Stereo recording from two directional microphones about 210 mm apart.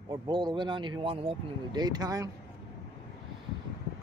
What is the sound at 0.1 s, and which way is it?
Speech, 20° right (ahead or behind).